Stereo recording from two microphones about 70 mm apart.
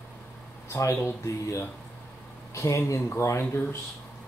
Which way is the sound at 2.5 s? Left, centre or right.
Left.